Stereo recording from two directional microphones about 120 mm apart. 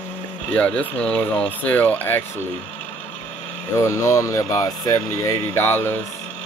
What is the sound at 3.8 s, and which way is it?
Speech, 25° left (ahead or behind).